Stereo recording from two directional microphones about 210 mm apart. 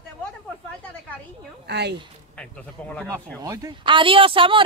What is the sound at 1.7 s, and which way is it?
Speech, 50° right (ahead or behind).